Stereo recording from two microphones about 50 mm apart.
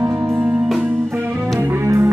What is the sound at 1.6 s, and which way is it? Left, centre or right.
Music, right.